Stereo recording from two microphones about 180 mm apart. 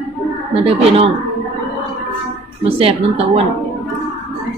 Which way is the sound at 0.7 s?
30° right (ahead or behind).